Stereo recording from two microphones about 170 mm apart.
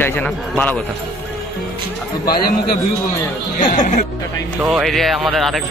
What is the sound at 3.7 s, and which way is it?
Speech, 50° left (ahead or behind).